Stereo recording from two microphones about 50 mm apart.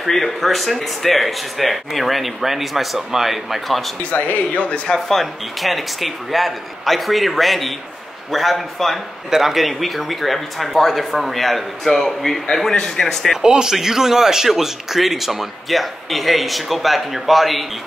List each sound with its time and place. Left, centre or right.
0.0 s speech: centre
4.0 s speech: left
4.9 s speech: centre
13.4 s speech: centre